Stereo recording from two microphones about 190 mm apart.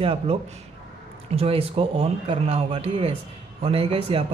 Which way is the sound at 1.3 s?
30° right (ahead or behind).